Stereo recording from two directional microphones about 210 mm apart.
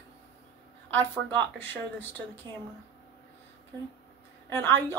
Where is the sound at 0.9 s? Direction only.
10° left (ahead or behind).